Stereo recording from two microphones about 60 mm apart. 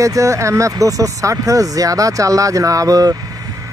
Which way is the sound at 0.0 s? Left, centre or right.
Right.